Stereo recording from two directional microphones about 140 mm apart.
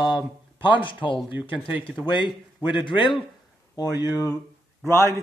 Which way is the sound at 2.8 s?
35° left (ahead or behind).